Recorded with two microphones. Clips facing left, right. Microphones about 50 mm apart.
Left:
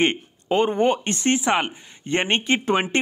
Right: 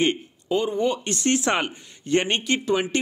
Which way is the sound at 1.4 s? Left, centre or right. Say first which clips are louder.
Left 2 dB; centre.